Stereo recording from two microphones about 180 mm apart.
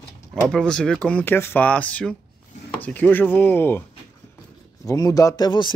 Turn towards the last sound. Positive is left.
turn(degrees=25)  # may be behind; listen again after turning